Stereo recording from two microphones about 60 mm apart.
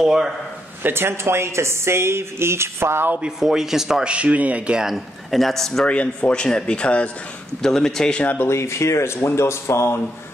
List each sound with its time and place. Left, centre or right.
0.0 s a man's voice: centre
0.8 s speech: right
3.2 s a man's voice: centre
4.1 s speech: right
4.7 s speech: centre
5.9 s speech: left
7.6 s speech: centre
8.4 s speech: left